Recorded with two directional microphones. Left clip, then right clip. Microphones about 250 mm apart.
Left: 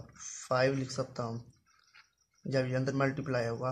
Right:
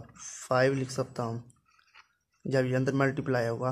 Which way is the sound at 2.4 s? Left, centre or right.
Right.